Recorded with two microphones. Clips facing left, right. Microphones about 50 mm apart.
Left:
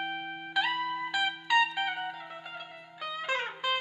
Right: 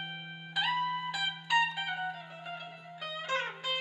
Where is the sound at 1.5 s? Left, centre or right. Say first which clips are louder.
Left 2 dB; left.